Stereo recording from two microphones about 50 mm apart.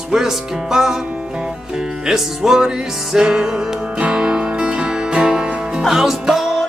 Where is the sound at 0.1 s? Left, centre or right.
Centre.